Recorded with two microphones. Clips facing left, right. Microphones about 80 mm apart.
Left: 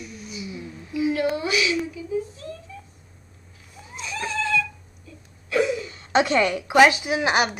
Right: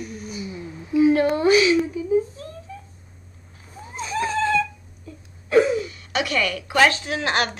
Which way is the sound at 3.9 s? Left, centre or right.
Right.